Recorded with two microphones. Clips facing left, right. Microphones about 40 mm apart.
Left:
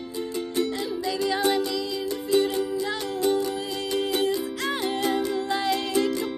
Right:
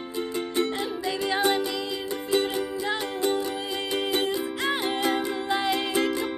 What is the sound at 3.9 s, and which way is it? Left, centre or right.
Music, right.